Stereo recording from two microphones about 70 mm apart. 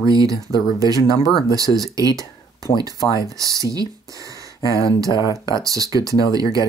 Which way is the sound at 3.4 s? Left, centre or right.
Right.